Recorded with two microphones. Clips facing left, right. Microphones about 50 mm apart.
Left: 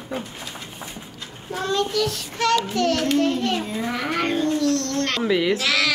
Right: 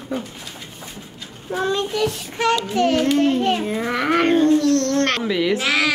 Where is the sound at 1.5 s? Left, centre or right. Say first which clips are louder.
Right 2 dB; centre.